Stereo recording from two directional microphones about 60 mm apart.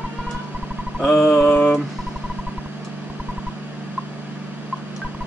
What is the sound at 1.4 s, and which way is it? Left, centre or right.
Mantra, left.